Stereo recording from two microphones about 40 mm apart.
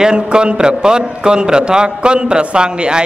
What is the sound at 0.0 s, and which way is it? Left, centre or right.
A man's voice, right.